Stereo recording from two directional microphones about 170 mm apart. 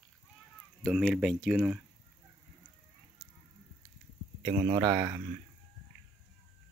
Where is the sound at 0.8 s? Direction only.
Centre (ahead or behind).